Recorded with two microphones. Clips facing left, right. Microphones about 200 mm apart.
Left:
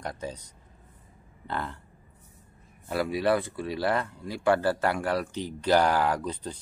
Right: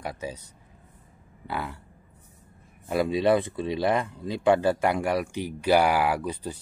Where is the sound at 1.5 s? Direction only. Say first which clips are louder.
Right 1 dB; 10° right (ahead or behind).